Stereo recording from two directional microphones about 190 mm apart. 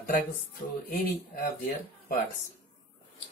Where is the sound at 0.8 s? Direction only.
50° left (ahead or behind).